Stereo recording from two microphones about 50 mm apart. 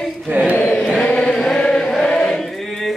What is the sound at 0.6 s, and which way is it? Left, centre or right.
Chant, left.